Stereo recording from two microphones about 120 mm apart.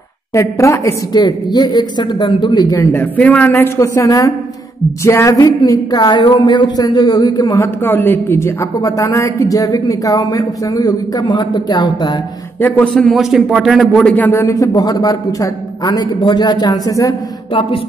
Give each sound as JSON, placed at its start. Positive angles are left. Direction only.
{"t": 0.3, "sound": "a woman's voice", "side_deg": 25}
{"t": 7.6, "sound": "a woman's voice", "side_deg": 20}
{"t": 12.5, "sound": "a woman's voice", "side_deg": 15}